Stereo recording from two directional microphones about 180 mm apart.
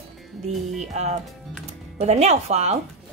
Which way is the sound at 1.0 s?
35° right (ahead or behind).